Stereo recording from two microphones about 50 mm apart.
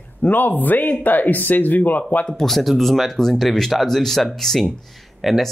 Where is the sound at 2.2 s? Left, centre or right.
Centre.